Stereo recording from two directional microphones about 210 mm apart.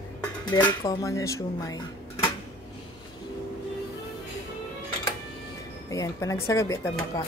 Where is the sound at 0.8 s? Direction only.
15° left (ahead or behind).